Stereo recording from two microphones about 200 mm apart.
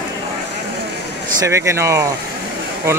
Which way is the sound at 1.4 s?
15° right (ahead or behind).